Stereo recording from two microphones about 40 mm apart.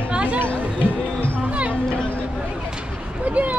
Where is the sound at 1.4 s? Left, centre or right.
Right.